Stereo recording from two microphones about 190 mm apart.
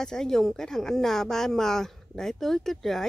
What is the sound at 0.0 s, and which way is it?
Speech, centre (ahead or behind).